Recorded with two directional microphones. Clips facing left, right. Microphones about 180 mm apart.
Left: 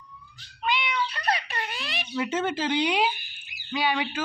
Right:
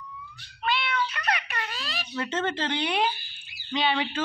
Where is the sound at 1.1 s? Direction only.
30° left (ahead or behind).